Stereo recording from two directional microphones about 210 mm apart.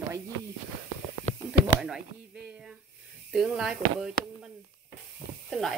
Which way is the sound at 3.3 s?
Centre (ahead or behind).